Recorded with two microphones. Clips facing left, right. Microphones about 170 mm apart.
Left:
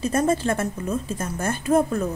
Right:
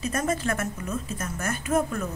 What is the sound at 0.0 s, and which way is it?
A woman's voice, 30° left (ahead or behind).